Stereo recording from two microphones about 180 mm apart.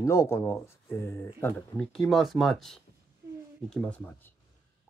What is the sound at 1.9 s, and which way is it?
Speech, centre (ahead or behind).